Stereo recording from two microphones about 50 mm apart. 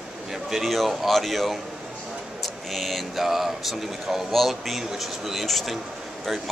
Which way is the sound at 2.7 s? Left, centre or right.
Centre.